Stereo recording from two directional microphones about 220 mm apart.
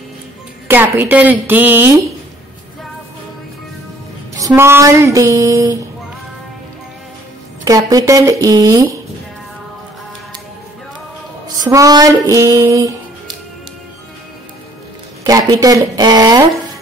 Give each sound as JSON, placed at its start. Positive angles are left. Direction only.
{"t": 0.7, "sound": "music", "side_deg": -10}
{"t": 4.4, "sound": "music", "side_deg": -15}
{"t": 7.6, "sound": "music", "side_deg": -15}
{"t": 11.4, "sound": "music", "side_deg": -15}
{"t": 15.2, "sound": "music", "side_deg": -15}